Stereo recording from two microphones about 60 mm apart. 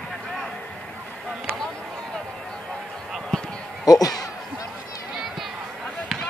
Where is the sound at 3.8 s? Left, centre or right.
Left.